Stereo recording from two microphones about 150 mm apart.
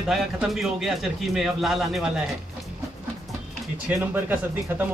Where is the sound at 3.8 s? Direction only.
10° right (ahead or behind).